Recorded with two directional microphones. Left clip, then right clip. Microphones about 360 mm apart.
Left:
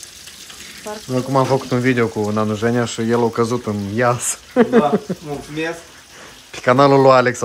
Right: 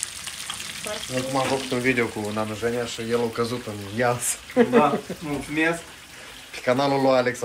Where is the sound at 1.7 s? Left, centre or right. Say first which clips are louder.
Left 5 dB; left.